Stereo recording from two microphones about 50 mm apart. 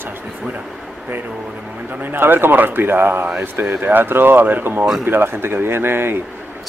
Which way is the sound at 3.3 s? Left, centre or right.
Right.